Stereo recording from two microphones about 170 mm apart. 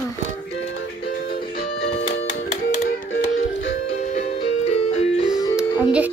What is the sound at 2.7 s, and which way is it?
Music, 55° left (ahead or behind).